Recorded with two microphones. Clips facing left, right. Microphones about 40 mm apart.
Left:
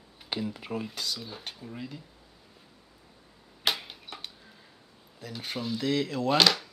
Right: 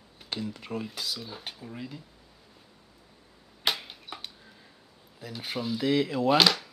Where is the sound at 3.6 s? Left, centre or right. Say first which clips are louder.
Even; centre.